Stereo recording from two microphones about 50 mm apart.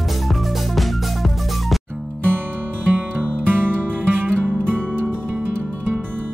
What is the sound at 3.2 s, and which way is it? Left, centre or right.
Music, right.